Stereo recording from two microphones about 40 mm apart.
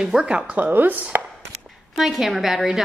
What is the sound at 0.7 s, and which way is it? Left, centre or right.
Speech, right.